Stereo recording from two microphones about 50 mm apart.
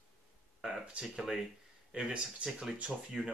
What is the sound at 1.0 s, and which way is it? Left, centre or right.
Speech, centre.